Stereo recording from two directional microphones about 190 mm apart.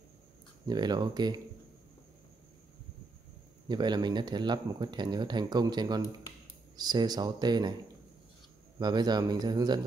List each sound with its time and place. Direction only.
0.7 s speech: 20° right (ahead or behind)
3.6 s speech: 20° right (ahead or behind)
8.7 s speech: 20° right (ahead or behind)